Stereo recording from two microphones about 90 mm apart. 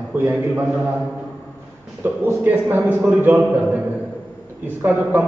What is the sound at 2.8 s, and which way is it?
Speech, 10° right (ahead or behind).